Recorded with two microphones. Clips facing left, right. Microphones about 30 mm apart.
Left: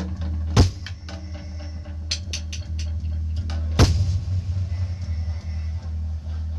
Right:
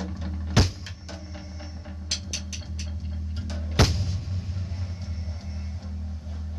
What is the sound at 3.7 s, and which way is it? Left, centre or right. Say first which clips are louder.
Music: left 2 dB; centre.